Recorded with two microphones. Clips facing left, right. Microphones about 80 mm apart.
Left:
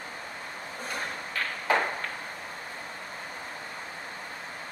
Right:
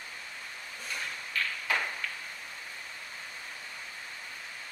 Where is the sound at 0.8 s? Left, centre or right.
Left.